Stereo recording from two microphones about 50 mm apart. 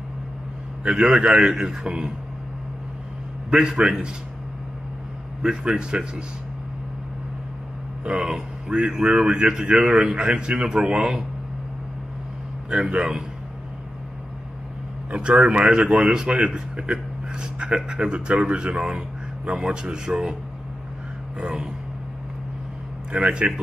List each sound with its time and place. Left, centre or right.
0.8 s a man's voice: centre
3.4 s a man's voice: centre
5.4 s a man's voice: centre
8.0 s a man's voice: centre
12.9 s a man's voice: right
15.0 s a man's voice: right
23.1 s a man's voice: right